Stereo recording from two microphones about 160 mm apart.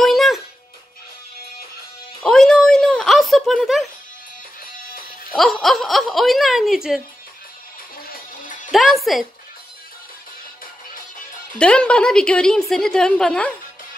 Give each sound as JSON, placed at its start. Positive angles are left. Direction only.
{"t": 0.0, "sound": "music", "side_deg": 0}
{"t": 2.2, "sound": "a sound", "side_deg": 5}
{"t": 5.3, "sound": "a woman's voice", "side_deg": 0}
{"t": 8.1, "sound": "music", "side_deg": 55}
{"t": 8.7, "sound": "a woman's voice", "side_deg": 0}
{"t": 11.5, "sound": "a woman's voice", "side_deg": 5}